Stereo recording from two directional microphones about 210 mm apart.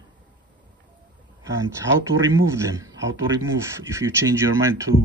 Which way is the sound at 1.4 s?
15° right (ahead or behind).